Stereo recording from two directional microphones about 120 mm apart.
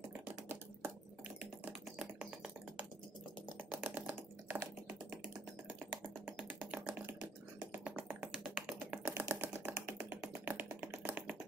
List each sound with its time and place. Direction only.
1.4 s music: 10° right (ahead or behind)
3.5 s typing: 15° right (ahead or behind)
5.8 s music: 15° right (ahead or behind)